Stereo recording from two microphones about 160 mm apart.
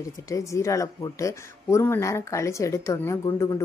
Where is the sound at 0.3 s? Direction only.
20° left (ahead or behind).